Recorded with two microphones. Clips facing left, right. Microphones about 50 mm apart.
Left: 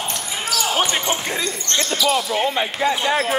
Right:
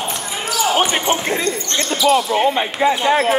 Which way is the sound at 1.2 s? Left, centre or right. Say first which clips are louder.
Right 5 dB; right.